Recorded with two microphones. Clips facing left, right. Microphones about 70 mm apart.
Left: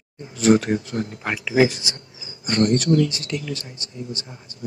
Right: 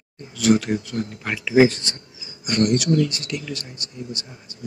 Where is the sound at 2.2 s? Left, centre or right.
Left.